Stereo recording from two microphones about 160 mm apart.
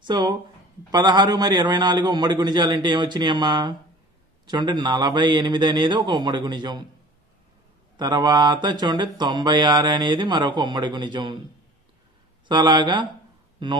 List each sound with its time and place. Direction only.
0.0 s speech: 25° right (ahead or behind)
8.0 s speech: 25° right (ahead or behind)
12.4 s speech: 25° right (ahead or behind)